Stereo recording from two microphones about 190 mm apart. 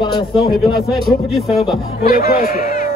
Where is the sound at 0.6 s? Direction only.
Centre (ahead or behind).